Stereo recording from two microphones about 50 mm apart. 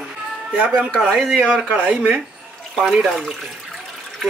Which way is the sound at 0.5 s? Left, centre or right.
Right.